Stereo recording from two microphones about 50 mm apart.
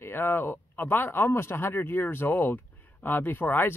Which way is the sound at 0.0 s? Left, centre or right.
Left.